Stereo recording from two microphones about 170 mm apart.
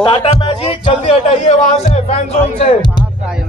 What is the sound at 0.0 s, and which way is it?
Speech, 30° left (ahead or behind).